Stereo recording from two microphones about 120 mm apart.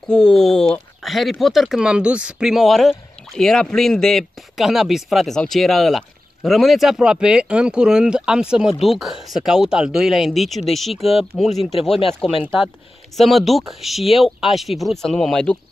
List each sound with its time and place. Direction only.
0.1 s speech: 5° left (ahead or behind)
11.0 s speech: 55° left (ahead or behind)
11.3 s speech: centre (ahead or behind)